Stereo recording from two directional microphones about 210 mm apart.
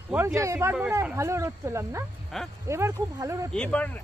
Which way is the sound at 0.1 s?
10° right (ahead or behind).